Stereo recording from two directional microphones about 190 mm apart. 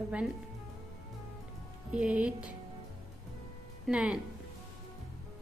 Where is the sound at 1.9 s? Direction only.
5° right (ahead or behind).